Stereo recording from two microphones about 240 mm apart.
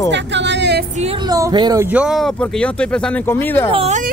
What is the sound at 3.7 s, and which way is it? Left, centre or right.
Speech, right.